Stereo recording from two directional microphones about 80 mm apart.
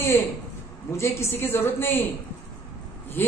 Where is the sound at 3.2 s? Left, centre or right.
Left.